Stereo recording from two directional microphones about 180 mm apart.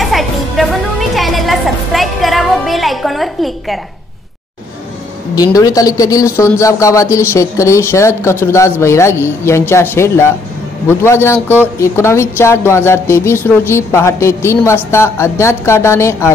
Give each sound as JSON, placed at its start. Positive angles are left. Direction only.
{"t": 0.0, "sound": "music", "side_deg": 0}
{"t": 5.3, "sound": "speech", "side_deg": 20}